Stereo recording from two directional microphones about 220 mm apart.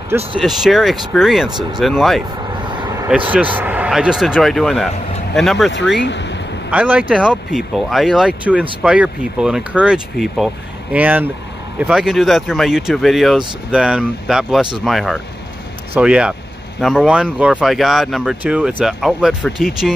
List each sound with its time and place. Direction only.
0.4 s speech: centre (ahead or behind)
1.5 s speech: 20° right (ahead or behind)
1.8 s speech: centre (ahead or behind)
3.3 s speech: 5° right (ahead or behind)
5.9 s a sound: 55° left (ahead or behind)
6.7 s speech: 5° right (ahead or behind)